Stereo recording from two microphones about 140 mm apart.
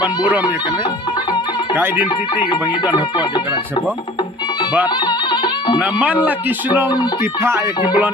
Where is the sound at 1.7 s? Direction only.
15° right (ahead or behind).